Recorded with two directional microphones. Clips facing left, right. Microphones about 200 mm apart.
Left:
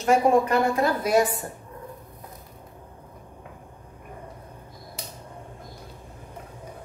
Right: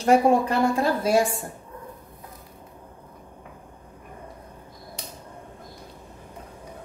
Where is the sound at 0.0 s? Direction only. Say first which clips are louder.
Right 1 dB; 30° right (ahead or behind).